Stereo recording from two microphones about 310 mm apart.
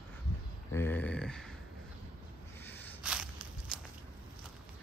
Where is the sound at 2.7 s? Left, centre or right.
Centre.